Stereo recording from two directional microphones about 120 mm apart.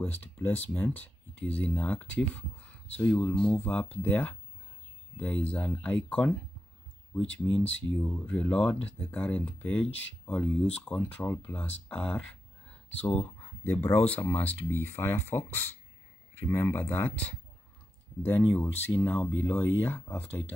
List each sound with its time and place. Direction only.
0.0 s speech: 15° left (ahead or behind)
7.3 s speech: 10° left (ahead or behind)